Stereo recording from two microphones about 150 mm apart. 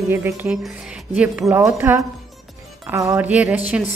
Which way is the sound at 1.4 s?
15° right (ahead or behind).